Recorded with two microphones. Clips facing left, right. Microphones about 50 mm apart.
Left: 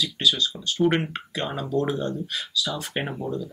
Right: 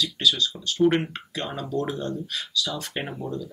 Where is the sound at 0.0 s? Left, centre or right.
Centre.